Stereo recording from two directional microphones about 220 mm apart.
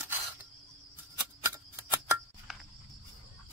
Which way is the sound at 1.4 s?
10° right (ahead or behind).